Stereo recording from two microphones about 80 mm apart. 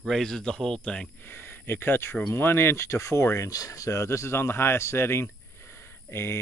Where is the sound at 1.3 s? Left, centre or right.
Left.